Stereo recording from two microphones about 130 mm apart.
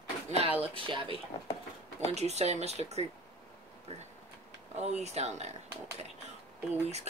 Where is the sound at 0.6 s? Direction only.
40° right (ahead or behind).